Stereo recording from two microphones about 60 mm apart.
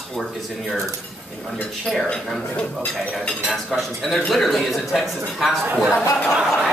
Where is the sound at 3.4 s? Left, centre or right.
Centre.